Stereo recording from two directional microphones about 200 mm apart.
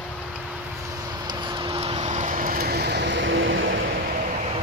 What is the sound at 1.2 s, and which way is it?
Vehicle, 20° right (ahead or behind).